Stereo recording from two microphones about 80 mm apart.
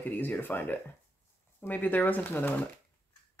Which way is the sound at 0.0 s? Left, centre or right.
Left.